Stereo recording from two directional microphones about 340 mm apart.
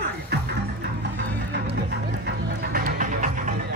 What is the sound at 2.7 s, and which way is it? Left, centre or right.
Music, right.